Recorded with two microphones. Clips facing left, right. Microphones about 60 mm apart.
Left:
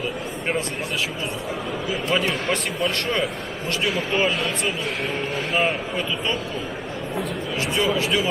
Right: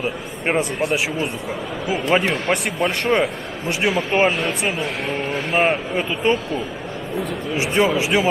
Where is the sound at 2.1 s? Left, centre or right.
Right.